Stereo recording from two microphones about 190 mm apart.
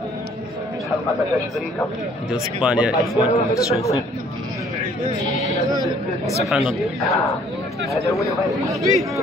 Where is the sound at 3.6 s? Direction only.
20° left (ahead or behind).